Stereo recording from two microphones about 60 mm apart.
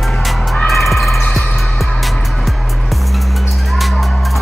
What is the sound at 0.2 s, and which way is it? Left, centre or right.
Music, centre.